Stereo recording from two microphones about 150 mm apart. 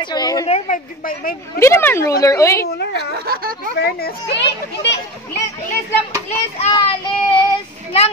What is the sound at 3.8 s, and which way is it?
Speech, 90° left.